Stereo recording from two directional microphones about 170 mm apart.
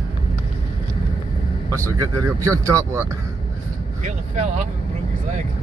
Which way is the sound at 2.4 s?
20° right (ahead or behind).